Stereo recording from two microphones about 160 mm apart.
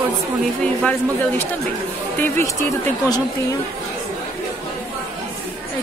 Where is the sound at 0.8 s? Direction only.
10° left (ahead or behind).